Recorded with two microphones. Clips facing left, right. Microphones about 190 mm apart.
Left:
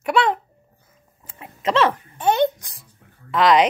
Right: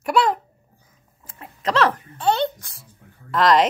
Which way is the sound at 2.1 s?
20° left (ahead or behind).